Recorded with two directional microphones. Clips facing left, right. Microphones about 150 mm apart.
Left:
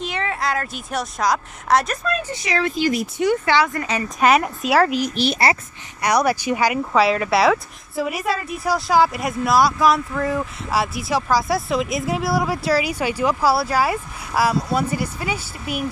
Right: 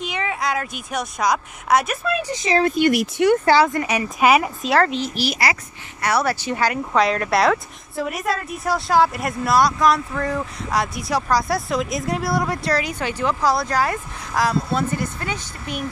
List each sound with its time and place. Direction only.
0.1 s a sound: 5° right (ahead or behind)
0.9 s a woman's voice: centre (ahead or behind)
2.1 s a woman's voice: 15° right (ahead or behind)
2.6 s speech: 55° right (ahead or behind)
3.4 s speech: 35° right (ahead or behind)
3.7 s a woman's voice: 15° right (ahead or behind)
4.3 s a woman's voice: centre (ahead or behind)
5.1 s speech: 25° left (ahead or behind)
6.0 s a woman's voice: 15° left (ahead or behind)